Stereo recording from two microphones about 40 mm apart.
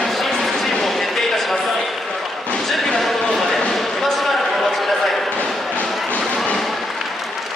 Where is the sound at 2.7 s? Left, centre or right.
Centre.